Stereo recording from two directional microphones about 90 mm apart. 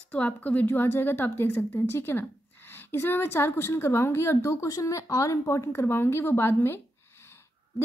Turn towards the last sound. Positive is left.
turn(degrees=25)  # may be behind; listen again after turning